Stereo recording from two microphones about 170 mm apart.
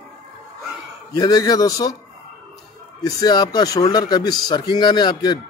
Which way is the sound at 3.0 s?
20° left (ahead or behind).